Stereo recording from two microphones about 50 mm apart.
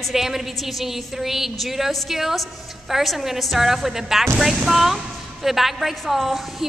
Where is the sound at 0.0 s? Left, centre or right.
Centre.